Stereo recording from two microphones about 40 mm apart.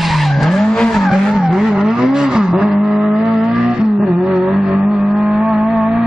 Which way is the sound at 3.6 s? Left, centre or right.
Centre.